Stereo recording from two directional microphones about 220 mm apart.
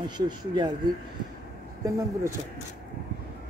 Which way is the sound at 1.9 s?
15° right (ahead or behind).